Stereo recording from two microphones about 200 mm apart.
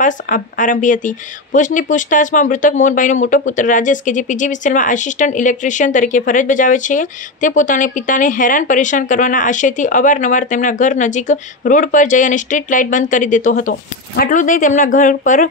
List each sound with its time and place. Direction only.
0.0 s speech: 40° left (ahead or behind)